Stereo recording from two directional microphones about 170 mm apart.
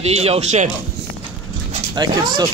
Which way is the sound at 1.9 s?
25° right (ahead or behind).